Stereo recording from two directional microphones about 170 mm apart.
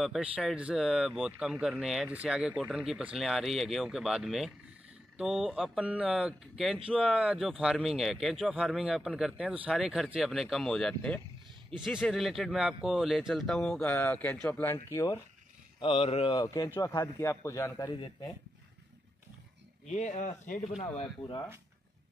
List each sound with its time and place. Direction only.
0.0 s a man's voice: 5° right (ahead or behind); by 15.1 s 20° left (ahead or behind)
15.8 s a man's voice: 30° left (ahead or behind)
19.9 s speech: 45° left (ahead or behind)